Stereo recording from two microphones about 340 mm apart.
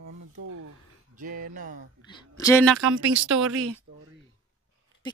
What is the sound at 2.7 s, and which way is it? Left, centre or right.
Speech, right.